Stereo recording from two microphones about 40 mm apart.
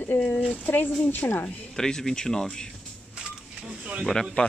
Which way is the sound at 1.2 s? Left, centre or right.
Left.